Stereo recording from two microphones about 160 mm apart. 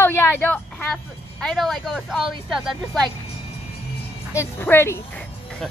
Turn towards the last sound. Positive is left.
turn(degrees=15)  # may be behind; listen again after turning